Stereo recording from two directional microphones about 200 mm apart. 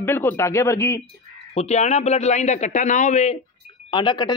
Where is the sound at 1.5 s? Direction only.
35° left (ahead or behind).